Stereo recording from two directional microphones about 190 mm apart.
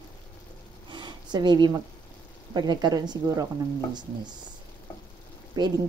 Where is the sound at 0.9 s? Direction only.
25° right (ahead or behind).